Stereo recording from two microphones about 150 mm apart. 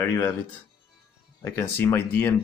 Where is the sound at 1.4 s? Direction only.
15° left (ahead or behind).